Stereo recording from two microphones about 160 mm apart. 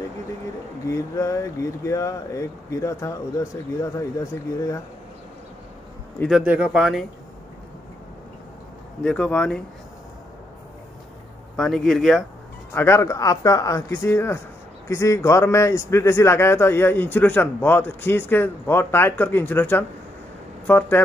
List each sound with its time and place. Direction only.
0.8 s speech: 20° left (ahead or behind)
6.4 s speech: 10° right (ahead or behind)
9.0 s a man's voice: 5° left (ahead or behind)
11.5 s speech: 5° left (ahead or behind)
12.7 s a man's voice: 15° left (ahead or behind)